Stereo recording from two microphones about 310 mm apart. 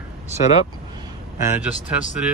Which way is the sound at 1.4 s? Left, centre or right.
Centre.